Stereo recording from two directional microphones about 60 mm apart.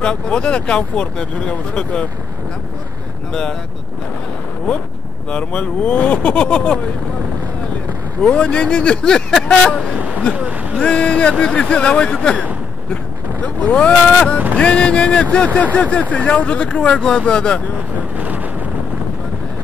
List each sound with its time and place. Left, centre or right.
0.0 s speech: centre
5.3 s speech: left
8.2 s speech: centre
10.3 s a sound: right
10.8 s speech: centre
18.1 s vehicle: right